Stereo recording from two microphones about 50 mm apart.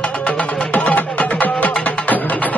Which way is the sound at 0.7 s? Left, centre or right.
Left.